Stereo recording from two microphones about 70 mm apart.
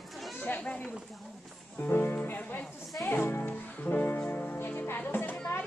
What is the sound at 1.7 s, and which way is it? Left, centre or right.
Music, left.